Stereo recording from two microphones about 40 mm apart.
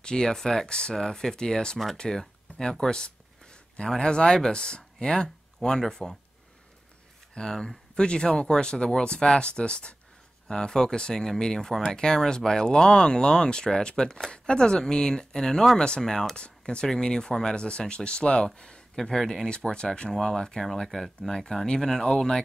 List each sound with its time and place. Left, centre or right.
0.0 s speech: centre
7.3 s speech: centre
15.8 s speech: left
16.1 s speech: centre
16.3 s speech: left
18.9 s speech: centre
19.5 s speech: left